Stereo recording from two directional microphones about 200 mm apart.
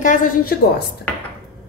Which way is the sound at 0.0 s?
40° left (ahead or behind).